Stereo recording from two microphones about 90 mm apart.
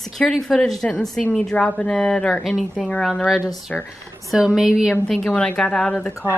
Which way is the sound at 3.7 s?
10° left (ahead or behind).